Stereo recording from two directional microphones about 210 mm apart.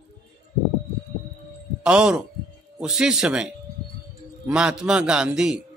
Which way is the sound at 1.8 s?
5° right (ahead or behind).